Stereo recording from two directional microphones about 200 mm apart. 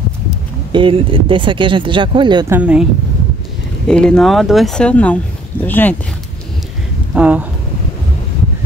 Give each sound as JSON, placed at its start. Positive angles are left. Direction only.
{"t": 0.7, "sound": "speech", "side_deg": -25}
{"t": 2.5, "sound": "speech", "side_deg": -5}
{"t": 3.8, "sound": "speech", "side_deg": 5}
{"t": 7.2, "sound": "speech", "side_deg": -5}